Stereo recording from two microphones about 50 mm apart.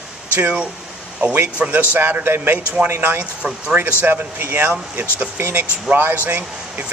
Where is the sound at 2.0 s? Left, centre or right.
Right.